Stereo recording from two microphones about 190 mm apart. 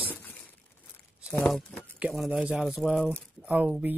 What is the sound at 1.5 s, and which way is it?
Speech, centre (ahead or behind).